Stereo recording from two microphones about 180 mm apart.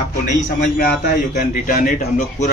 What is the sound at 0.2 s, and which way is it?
A man's voice, 45° left (ahead or behind).